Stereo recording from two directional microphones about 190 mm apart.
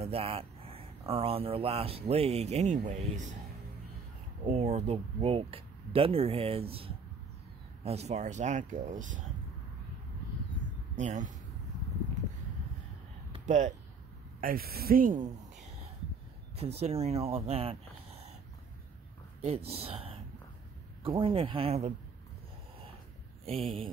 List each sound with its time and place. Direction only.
0.0 s speech: 30° right (ahead or behind)
4.5 s speech: 35° right (ahead or behind)
11.0 s speech: 40° right (ahead or behind)
13.3 s a sound: 40° right (ahead or behind)
14.4 s speech: 50° right (ahead or behind); by 18.3 s 30° right (ahead or behind)
19.4 s speech: 30° right (ahead or behind)